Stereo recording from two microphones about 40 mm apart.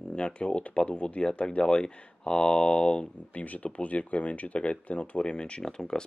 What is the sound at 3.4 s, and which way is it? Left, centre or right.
Speech, left.